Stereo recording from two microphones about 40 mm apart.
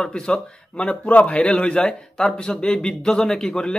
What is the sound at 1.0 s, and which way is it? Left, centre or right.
A man's voice, left.